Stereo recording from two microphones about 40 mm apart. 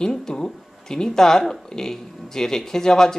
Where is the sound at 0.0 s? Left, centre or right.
Centre.